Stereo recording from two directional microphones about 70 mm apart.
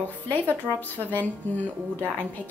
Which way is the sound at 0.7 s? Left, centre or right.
Left.